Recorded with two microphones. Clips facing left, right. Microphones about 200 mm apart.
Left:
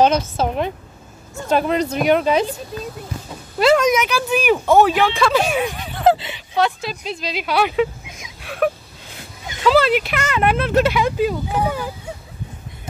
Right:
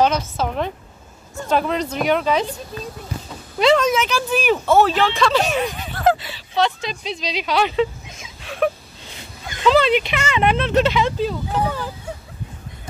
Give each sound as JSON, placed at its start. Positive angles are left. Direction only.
{"t": 0.0, "sound": "speech", "side_deg": 25}
{"t": 1.5, "sound": "speech", "side_deg": 10}
{"t": 3.5, "sound": "a sound", "side_deg": 5}
{"t": 3.8, "sound": "speech", "side_deg": 15}
{"t": 5.9, "sound": "speech", "side_deg": 25}